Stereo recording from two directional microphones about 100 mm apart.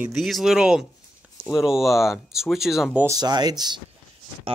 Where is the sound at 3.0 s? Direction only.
40° right (ahead or behind).